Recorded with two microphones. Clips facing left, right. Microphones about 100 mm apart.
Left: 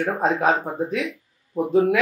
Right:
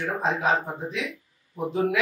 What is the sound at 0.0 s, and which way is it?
Speech, 50° left (ahead or behind).